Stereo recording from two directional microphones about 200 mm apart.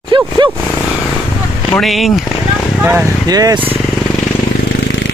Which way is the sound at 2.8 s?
15° right (ahead or behind).